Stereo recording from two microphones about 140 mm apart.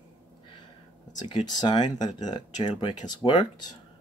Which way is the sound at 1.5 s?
30° left (ahead or behind).